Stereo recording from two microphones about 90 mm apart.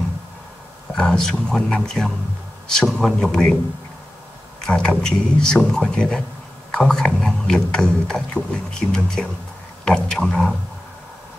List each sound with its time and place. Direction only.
0.9 s speech: 5° left (ahead or behind)
4.6 s speech: 10° left (ahead or behind)